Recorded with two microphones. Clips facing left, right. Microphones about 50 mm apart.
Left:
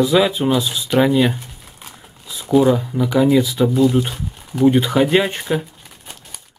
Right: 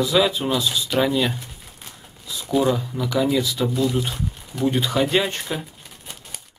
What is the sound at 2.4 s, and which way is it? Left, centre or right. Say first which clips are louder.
Speech: left 6 dB; centre.